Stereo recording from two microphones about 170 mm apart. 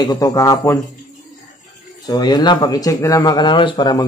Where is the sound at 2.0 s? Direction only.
25° left (ahead or behind).